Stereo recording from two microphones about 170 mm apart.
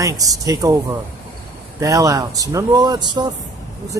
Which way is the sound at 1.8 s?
20° right (ahead or behind).